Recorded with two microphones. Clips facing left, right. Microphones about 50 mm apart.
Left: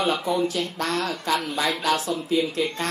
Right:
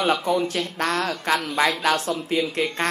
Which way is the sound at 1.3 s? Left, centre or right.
Right.